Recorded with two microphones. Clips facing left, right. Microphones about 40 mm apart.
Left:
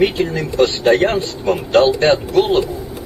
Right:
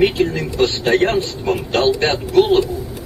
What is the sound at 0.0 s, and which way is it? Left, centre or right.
Speech, centre.